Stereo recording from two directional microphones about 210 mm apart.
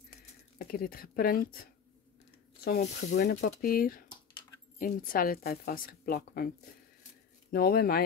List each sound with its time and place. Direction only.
0.6 s a woman's voice: 45° left (ahead or behind)
2.8 s speech: 35° left (ahead or behind)
3.2 s a woman's voice: 50° left (ahead or behind)
7.5 s a woman's voice: 45° left (ahead or behind)